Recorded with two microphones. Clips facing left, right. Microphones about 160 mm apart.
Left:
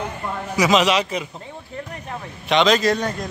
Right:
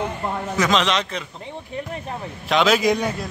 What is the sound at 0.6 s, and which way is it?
Speech, 10° left (ahead or behind).